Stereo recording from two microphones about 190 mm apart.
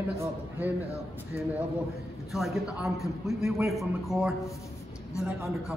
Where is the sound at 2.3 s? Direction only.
Centre (ahead or behind).